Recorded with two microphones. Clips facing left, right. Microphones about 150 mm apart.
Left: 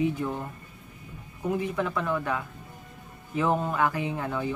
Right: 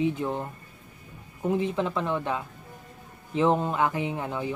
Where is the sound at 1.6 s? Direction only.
25° right (ahead or behind).